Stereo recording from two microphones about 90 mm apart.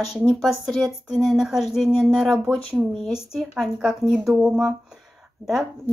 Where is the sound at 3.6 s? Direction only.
5° right (ahead or behind).